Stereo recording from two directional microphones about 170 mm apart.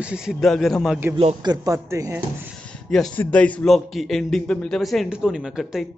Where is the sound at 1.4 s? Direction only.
20° right (ahead or behind).